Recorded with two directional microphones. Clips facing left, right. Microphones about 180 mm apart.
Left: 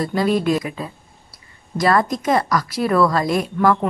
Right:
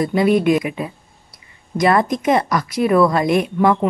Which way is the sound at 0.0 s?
20° right (ahead or behind).